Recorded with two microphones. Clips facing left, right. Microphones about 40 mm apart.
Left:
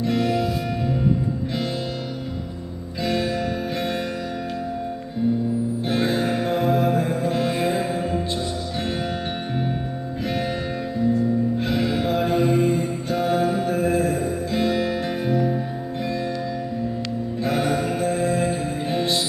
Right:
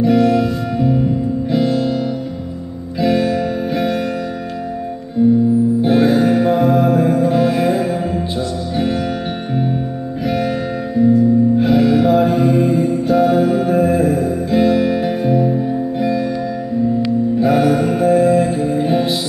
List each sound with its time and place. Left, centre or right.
0.0 s music: centre
3.0 s music: centre
5.8 s music: centre
11.6 s music: centre
17.4 s music: centre